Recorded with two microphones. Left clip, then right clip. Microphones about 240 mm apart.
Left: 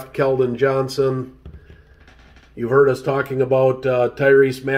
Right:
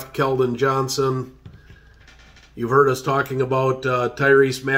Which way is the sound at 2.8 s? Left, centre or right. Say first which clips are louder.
Left 1 dB; centre.